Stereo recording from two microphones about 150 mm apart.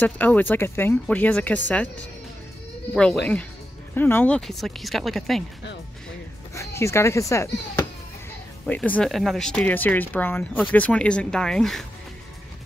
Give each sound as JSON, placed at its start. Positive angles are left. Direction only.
{"t": 0.0, "sound": "speech", "side_deg": 10}
{"t": 3.0, "sound": "speech", "side_deg": 5}
{"t": 4.4, "sound": "speech", "side_deg": 0}
{"t": 6.5, "sound": "a child's voice", "side_deg": 20}
{"t": 8.6, "sound": "speech", "side_deg": 10}